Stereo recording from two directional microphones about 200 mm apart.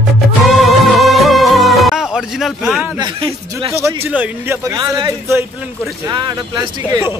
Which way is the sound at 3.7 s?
15° right (ahead or behind).